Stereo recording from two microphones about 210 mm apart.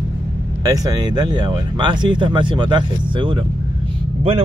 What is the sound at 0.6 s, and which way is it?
Speech, 15° right (ahead or behind).